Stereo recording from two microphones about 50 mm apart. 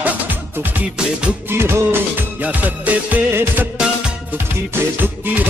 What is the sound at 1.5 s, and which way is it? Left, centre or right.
Music, right.